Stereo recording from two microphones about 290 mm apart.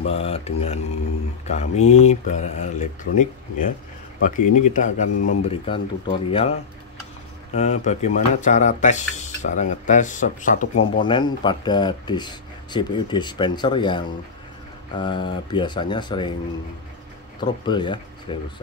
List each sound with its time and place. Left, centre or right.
0.0 s speech: left
7.5 s speech: left
17.4 s speech: centre